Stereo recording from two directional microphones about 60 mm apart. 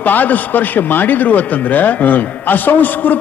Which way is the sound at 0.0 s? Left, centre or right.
Left.